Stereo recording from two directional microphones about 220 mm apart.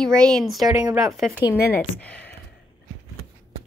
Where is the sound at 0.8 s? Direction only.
15° right (ahead or behind).